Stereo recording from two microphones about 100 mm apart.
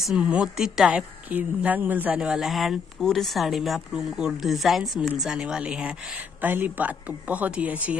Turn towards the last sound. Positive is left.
turn(degrees=-15)  # may be behind; listen again after turning